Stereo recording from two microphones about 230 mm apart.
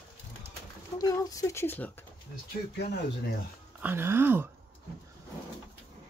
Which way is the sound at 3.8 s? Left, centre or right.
Centre.